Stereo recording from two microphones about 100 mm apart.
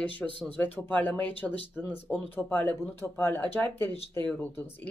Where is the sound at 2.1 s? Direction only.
Centre (ahead or behind).